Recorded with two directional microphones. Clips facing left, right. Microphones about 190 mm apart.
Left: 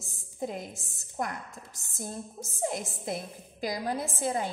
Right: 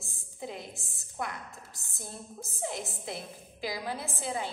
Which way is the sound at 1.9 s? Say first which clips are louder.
Left 6 dB; 45° left (ahead or behind).